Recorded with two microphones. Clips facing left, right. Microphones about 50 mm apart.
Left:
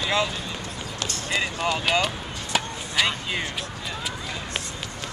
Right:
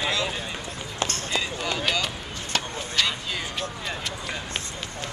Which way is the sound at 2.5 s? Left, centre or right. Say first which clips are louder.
Left 2 dB; centre.